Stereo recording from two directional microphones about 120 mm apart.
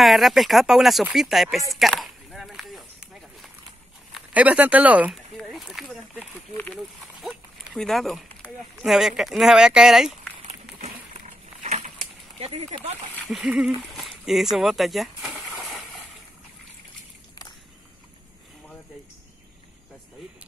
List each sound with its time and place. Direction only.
0.0 s speech: centre (ahead or behind)
1.1 s a sound: 5° right (ahead or behind)
4.3 s speech: 10° right (ahead or behind)
5.1 s speech: centre (ahead or behind)
6.7 s a sound: centre (ahead or behind)
8.8 s speech: 5° right (ahead or behind)
10.4 s a sound: 70° right (ahead or behind)
12.4 s speech: 55° right (ahead or behind)
13.3 s speech: centre (ahead or behind)